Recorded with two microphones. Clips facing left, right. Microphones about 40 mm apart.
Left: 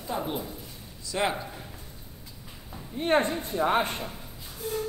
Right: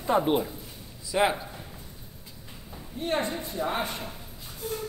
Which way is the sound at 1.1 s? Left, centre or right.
Centre.